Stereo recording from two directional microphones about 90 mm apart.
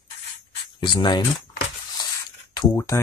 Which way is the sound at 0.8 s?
55° left (ahead or behind).